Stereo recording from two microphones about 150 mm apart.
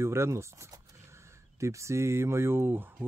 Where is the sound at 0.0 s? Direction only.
20° right (ahead or behind).